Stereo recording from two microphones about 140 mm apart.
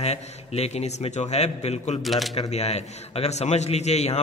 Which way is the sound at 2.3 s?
50° left (ahead or behind).